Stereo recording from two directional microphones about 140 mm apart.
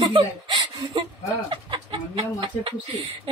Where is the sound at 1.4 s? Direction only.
35° right (ahead or behind).